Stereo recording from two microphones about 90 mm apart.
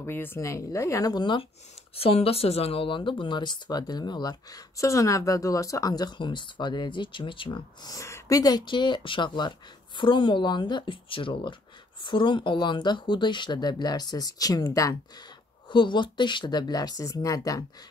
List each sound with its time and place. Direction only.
0.0 s speech: 25° left (ahead or behind)
1.1 s speech: 60° left (ahead or behind)
2.0 s speech: 90° left; by 7.6 s 70° left (ahead or behind)
7.8 s speech: 35° left (ahead or behind); by 11.5 s 75° left (ahead or behind)
12.0 s speech: 65° left (ahead or behind); by 15.2 s 40° left (ahead or behind)
15.7 s speech: 60° left (ahead or behind); by 17.6 s 40° left (ahead or behind)